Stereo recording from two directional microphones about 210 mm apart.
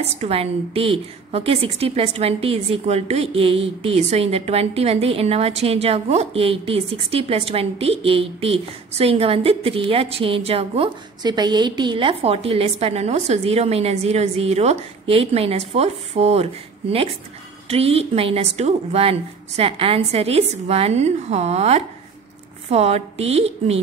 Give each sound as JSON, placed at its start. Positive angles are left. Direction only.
{"t": 0.0, "sound": "a woman's voice", "side_deg": -30}
{"t": 17.6, "sound": "a woman's voice", "side_deg": -30}